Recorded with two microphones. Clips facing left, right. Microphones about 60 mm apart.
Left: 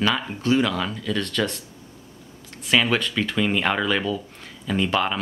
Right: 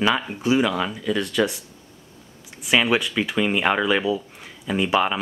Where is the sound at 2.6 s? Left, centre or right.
Centre.